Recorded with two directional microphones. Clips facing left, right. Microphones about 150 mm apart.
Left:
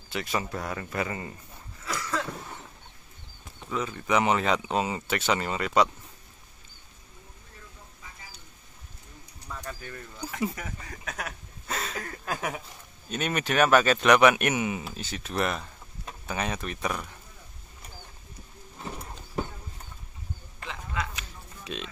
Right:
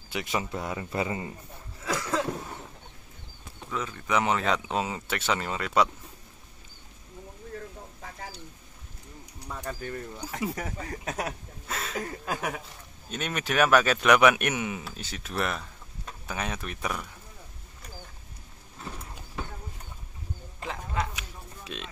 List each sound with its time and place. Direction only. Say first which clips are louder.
0.1 s speech: even; 15° right (ahead or behind)
1.9 s cough: right 3 dB; 25° right (ahead or behind)
3.7 s speech: left 2 dB; 5° left (ahead or behind)
9.7 s speech: right 9 dB; 35° right (ahead or behind)
11.6 s a sound: even; centre (ahead or behind)
12.0 s speech: right 2 dB; 20° right (ahead or behind)
12.4 s speech: even; centre (ahead or behind)
20.6 s a sound: right 3 dB; 40° right (ahead or behind)
21.1 s a sound: right 1 dB; 5° right (ahead or behind)